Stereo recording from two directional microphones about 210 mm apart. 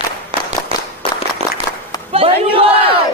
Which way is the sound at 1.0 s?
30° left (ahead or behind).